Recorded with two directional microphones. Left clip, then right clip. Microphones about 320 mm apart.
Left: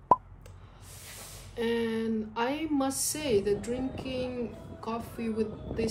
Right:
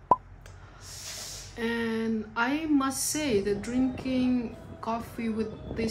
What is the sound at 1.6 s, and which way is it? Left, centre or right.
A woman's voice, centre.